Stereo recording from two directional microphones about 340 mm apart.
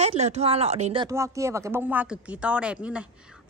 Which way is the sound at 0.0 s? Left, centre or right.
Centre.